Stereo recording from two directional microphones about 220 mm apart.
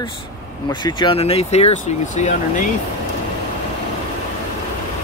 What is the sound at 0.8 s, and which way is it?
Speech, 20° left (ahead or behind).